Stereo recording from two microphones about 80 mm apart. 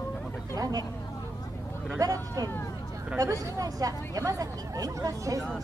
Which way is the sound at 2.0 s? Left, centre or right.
Right.